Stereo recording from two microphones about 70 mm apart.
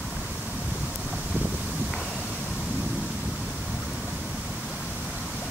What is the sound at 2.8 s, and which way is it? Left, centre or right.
Thunder, centre.